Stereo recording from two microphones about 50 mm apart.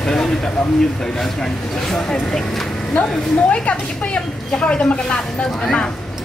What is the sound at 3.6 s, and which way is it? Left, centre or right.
Speech, left.